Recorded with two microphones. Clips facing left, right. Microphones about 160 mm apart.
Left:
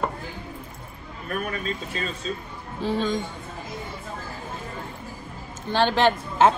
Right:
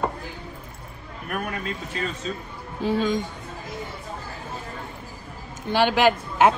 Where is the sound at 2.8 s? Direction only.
10° right (ahead or behind).